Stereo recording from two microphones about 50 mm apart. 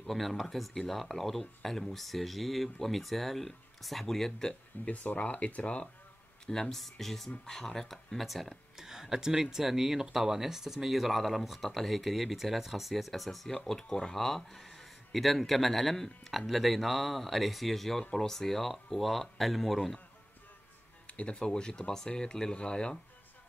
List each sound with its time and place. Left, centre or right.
0.1 s speech: centre
4.8 s speech: left
6.4 s speech: centre
8.7 s speech: centre
21.1 s speech: left